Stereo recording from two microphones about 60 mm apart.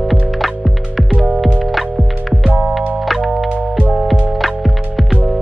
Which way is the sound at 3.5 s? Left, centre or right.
Right.